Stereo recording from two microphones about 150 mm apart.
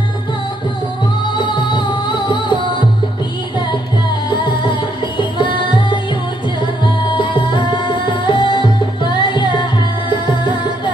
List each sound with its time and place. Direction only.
1.3 s music: 30° left (ahead or behind)
4.6 s music: 30° left (ahead or behind)